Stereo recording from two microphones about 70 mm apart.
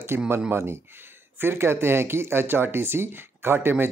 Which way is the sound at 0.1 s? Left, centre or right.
Right.